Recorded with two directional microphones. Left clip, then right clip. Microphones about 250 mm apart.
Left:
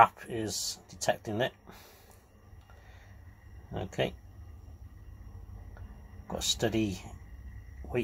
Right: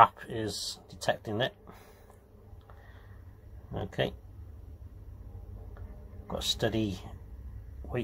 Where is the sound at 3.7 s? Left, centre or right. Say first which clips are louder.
Even; centre.